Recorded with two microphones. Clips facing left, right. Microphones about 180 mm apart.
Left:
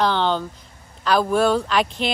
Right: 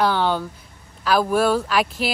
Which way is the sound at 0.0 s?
10° right (ahead or behind).